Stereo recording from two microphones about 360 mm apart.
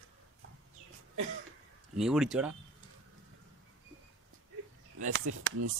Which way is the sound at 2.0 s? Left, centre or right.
Centre.